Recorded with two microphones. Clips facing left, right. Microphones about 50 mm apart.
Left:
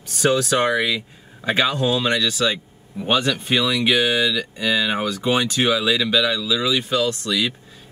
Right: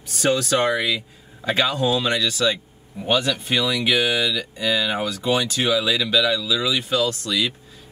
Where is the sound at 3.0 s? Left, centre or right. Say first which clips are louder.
Left 1 dB; left.